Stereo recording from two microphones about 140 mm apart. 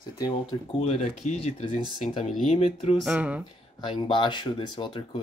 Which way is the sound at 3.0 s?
10° right (ahead or behind).